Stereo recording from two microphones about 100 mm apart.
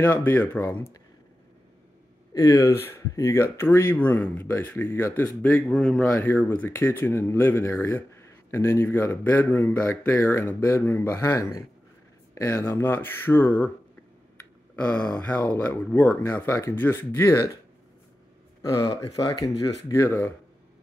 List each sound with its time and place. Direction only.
0.0 s speech: 20° left (ahead or behind)
2.3 s speech: 35° left (ahead or behind); by 5.6 s 20° left (ahead or behind)
5.7 s speech: 5° left (ahead or behind)
6.1 s speech: 20° left (ahead or behind)
14.8 s speech: 10° left (ahead or behind)
18.6 s speech: 35° left (ahead or behind)